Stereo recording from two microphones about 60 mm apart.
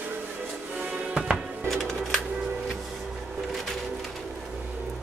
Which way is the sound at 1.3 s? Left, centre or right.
Centre.